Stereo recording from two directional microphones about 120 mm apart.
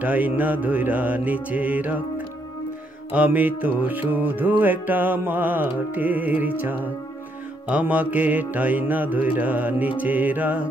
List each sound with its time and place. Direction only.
0.0 s music: 15° right (ahead or behind)